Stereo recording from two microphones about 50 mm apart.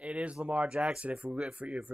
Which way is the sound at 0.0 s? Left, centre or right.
Right.